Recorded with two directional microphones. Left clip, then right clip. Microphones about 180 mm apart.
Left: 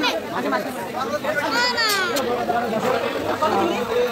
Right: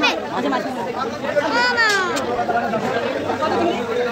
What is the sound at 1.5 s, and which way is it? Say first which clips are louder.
Speech: right 4 dB; 40° right (ahead or behind).